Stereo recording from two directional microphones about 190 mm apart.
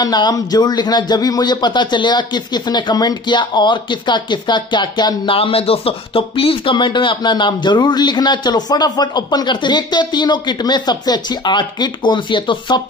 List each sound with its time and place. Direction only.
0.0 s speech: 20° left (ahead or behind)